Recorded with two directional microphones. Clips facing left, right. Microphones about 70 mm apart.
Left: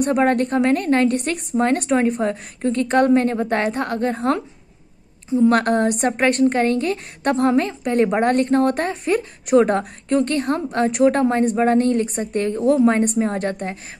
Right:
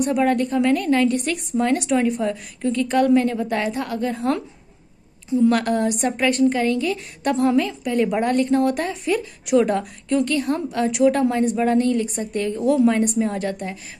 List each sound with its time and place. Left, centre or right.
0.0 s a woman's voice: left
5.5 s a woman's voice: left